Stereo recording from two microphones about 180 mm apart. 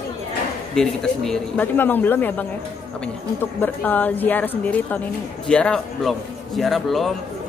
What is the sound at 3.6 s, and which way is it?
A man's voice, 10° left (ahead or behind).